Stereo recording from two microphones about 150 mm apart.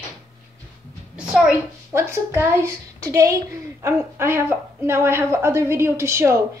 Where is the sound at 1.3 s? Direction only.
5° right (ahead or behind).